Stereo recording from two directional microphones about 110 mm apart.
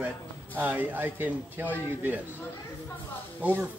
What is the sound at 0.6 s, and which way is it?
Speech, 15° right (ahead or behind).